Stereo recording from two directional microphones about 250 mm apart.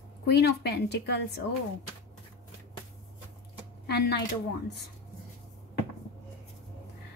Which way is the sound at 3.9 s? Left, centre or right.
Left.